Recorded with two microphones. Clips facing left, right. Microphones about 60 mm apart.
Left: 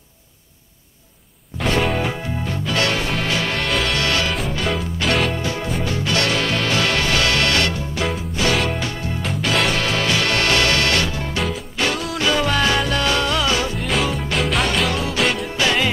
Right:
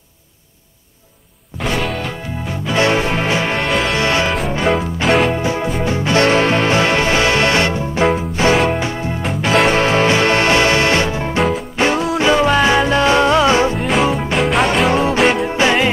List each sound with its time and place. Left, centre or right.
1.6 s music: centre
2.4 s music: centre
2.8 s music: right
3.6 s music: centre
3.9 s music: right
5.0 s music: centre
5.3 s music: right
8.5 s music: right
9.2 s music: centre
9.7 s music: right
13.8 s music: centre
14.9 s music: right